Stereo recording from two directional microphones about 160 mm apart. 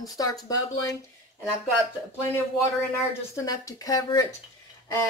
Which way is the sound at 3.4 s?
20° left (ahead or behind).